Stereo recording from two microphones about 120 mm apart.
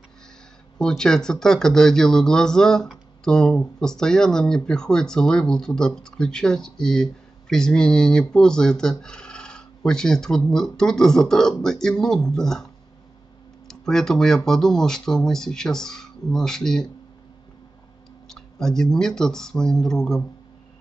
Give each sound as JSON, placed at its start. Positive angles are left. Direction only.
{"t": 0.7, "sound": "speech", "side_deg": 5}
{"t": 13.7, "sound": "speech", "side_deg": 5}
{"t": 18.3, "sound": "speech", "side_deg": 5}